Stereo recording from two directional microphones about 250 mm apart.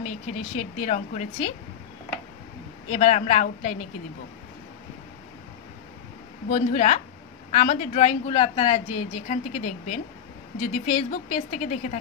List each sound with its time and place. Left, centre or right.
0.0 s a woman's voice: left
2.9 s a woman's voice: left
6.5 s a woman's voice: left